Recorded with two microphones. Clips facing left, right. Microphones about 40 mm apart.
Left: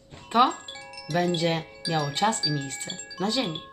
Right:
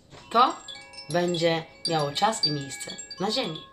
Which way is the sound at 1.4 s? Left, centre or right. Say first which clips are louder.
Right 2 dB; centre.